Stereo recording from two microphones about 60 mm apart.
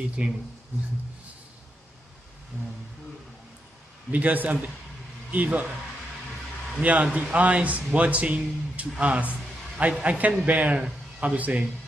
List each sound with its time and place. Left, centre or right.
0.2 s a man's voice: right
4.1 s a man's voice: right
6.8 s a man's voice: right
9.0 s a sound: right
9.9 s a man's voice: right